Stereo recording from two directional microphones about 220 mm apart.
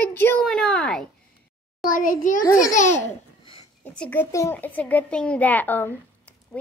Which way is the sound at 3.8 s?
5° left (ahead or behind).